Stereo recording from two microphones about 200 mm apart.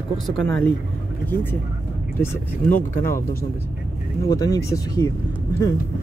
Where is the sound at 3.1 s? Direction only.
15° left (ahead or behind).